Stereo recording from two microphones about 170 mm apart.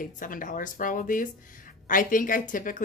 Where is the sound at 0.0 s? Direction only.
50° left (ahead or behind).